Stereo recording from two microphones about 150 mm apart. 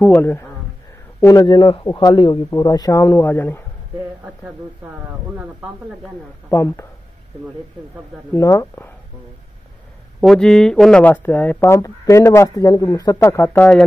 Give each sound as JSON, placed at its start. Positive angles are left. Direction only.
{"t": 0.0, "sound": "speech", "side_deg": 15}
{"t": 1.2, "sound": "a man's voice", "side_deg": 25}
{"t": 6.5, "sound": "speech", "side_deg": 15}
{"t": 8.3, "sound": "speech", "side_deg": 20}
{"t": 10.2, "sound": "speech", "side_deg": 5}